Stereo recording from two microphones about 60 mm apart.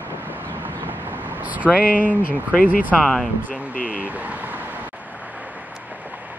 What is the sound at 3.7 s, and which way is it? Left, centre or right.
Speech, left.